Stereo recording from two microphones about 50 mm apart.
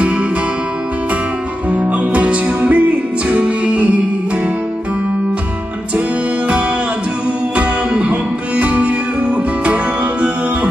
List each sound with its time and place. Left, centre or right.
1.7 s music: right
7.5 s music: right